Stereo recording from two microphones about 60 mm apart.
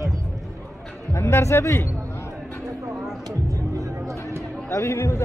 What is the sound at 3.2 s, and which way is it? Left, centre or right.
Music, right.